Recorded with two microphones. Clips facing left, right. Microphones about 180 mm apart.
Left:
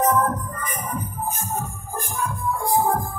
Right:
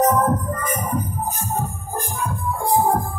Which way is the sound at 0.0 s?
45° right (ahead or behind).